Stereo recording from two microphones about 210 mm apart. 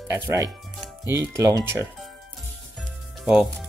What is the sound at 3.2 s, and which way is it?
Speech, centre (ahead or behind).